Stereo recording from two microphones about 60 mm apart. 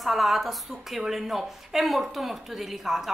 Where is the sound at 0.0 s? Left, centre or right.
Centre.